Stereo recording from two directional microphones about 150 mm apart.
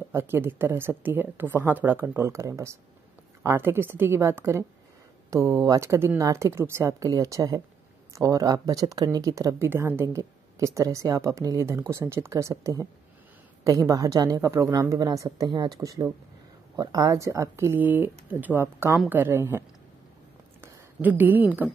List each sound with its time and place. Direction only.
0.1 s a woman's voice: 15° right (ahead or behind)
20.6 s a woman's voice: 15° right (ahead or behind)